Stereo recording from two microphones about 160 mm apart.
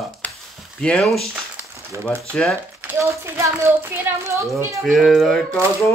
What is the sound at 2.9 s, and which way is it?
A child's voice, 20° right (ahead or behind).